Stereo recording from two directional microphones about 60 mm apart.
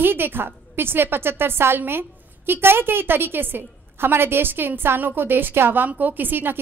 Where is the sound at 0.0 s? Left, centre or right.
Right.